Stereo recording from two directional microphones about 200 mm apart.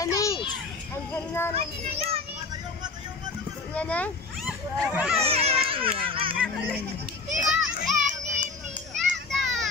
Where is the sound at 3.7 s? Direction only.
5° left (ahead or behind).